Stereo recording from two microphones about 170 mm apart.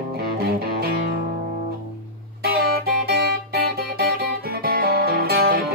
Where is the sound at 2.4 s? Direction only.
70° right (ahead or behind).